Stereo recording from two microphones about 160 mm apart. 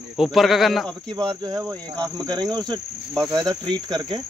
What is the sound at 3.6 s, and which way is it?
Cricket, 30° right (ahead or behind).